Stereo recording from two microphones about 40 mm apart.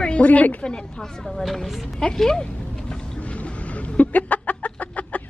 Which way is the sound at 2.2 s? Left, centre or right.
Centre.